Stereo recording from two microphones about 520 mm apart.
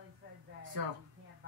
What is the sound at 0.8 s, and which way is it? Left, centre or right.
Speech, right.